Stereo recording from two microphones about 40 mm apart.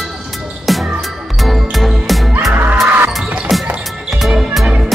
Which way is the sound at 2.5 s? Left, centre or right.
Right.